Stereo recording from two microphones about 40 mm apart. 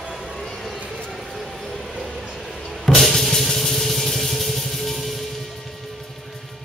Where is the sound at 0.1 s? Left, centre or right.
Centre.